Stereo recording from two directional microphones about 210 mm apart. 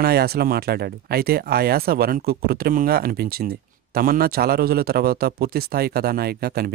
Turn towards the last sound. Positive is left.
turn(degrees=-45)  # may be behind; listen again after turning